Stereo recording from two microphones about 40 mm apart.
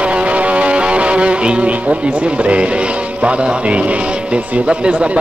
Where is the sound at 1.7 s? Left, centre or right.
Right.